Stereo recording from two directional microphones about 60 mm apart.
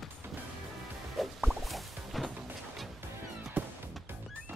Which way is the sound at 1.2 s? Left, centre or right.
Centre.